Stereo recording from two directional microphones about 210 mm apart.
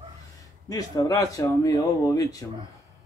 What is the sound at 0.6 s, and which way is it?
Speech, 15° left (ahead or behind).